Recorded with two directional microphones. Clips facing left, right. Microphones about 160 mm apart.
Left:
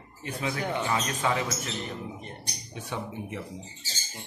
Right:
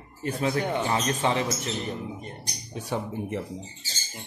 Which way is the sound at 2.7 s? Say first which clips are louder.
Right 5 dB; 35° right (ahead or behind).